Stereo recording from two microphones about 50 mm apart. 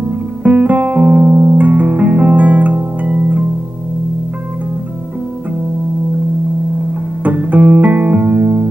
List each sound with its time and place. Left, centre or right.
0.4 s music: right
7.2 s music: right